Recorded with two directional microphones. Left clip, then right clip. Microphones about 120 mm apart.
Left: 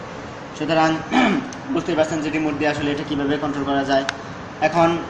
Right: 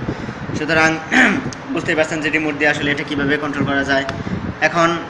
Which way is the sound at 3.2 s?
10° left (ahead or behind).